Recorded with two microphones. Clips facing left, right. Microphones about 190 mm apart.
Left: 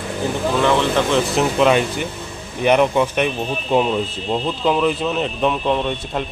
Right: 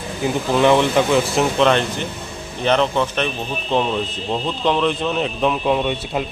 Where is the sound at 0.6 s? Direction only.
15° right (ahead or behind).